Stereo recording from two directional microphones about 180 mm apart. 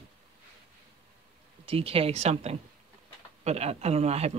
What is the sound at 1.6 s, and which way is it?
A man's voice, 30° right (ahead or behind).